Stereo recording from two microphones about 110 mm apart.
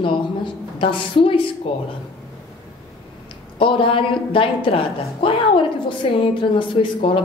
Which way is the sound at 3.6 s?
55° left (ahead or behind).